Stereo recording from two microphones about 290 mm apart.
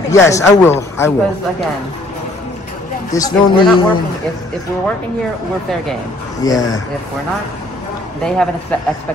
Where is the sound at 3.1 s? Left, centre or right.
Centre.